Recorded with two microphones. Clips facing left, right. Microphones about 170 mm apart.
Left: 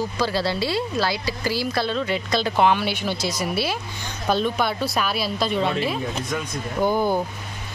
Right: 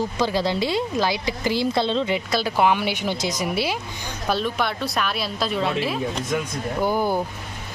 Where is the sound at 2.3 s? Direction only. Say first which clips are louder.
Left 2 dB; 10° right (ahead or behind).